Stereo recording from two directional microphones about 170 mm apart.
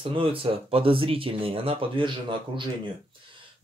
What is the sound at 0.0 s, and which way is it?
Speech, 30° right (ahead or behind).